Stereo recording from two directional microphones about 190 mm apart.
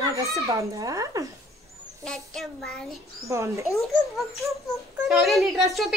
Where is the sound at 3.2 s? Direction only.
15° right (ahead or behind).